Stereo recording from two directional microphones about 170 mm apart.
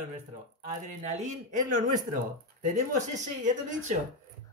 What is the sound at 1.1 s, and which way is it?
Speech, 45° right (ahead or behind).